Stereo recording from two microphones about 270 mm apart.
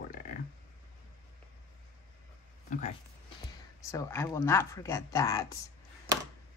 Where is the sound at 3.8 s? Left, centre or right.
Centre.